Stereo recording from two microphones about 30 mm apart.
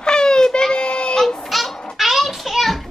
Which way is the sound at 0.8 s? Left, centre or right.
Left.